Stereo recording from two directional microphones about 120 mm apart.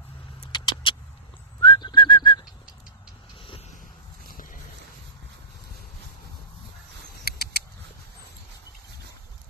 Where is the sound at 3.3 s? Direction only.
50° left (ahead or behind).